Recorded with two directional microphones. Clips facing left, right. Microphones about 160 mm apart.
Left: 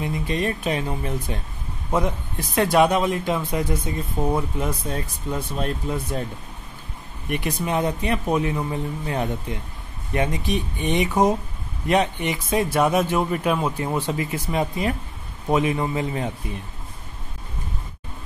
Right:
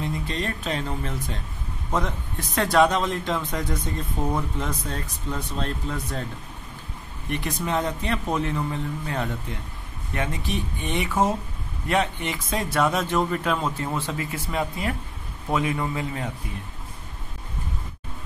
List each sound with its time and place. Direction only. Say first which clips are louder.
0.0 s a man's voice: left 4 dB; 15° left (ahead or behind)
7.2 s a man's voice: left 2 dB; 10° left (ahead or behind)